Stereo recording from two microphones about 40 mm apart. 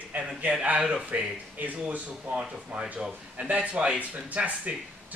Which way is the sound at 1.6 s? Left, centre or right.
Right.